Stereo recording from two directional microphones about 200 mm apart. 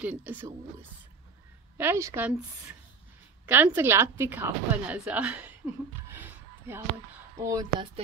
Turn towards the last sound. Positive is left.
turn(degrees=-15)  # may be behind; listen again after turning